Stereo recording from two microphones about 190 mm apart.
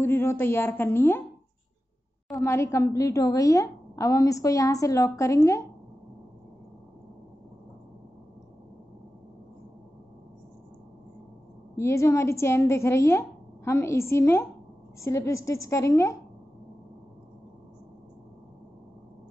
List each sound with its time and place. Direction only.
0.0 s a woman's voice: 10° left (ahead or behind)
2.3 s a woman's voice: 15° left (ahead or behind)
11.7 s a woman's voice: 15° left (ahead or behind)